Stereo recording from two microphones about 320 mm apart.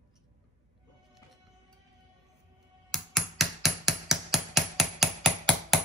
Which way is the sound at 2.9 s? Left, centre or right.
Centre.